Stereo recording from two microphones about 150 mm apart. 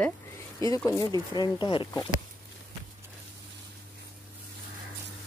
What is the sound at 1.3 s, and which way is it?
Speech, 30° left (ahead or behind).